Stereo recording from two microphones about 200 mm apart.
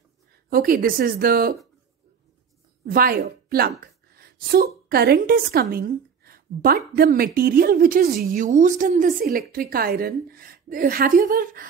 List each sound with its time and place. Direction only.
0.5 s a woman's voice: 45° right (ahead or behind)
2.8 s a woman's voice: 50° right (ahead or behind)